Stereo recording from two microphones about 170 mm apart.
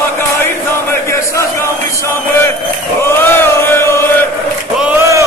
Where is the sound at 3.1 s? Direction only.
15° left (ahead or behind).